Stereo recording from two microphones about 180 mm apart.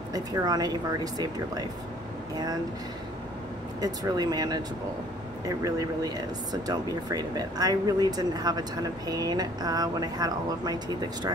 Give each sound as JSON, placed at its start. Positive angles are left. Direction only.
{"t": 0.1, "sound": "speech", "side_deg": -20}
{"t": 3.8, "sound": "speech", "side_deg": -20}
{"t": 5.6, "sound": "speech", "side_deg": -20}